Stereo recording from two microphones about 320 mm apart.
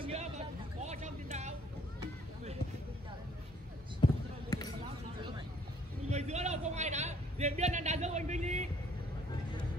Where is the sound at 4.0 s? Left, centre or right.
Centre.